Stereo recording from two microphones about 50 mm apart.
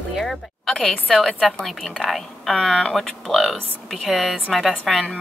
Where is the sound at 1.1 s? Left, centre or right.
Centre.